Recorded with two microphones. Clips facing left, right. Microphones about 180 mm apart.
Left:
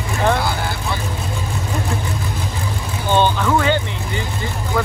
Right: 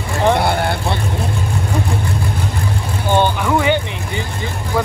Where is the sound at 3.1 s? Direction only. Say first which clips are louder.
Right 1 dB; 15° right (ahead or behind).